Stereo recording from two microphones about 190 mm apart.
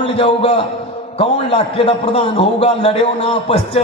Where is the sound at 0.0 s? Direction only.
30° left (ahead or behind).